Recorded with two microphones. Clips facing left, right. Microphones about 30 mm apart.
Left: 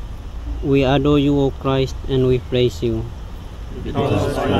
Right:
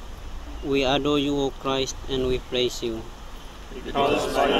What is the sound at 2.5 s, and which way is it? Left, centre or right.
Speech, centre.